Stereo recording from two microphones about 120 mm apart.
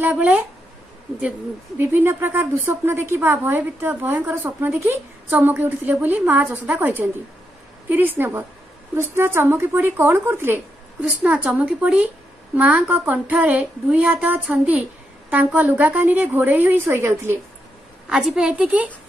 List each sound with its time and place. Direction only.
0.0 s a woman's voice: 15° right (ahead or behind)
1.8 s a woman's voice: 20° right (ahead or behind)
18.0 s a woman's voice: 5° right (ahead or behind)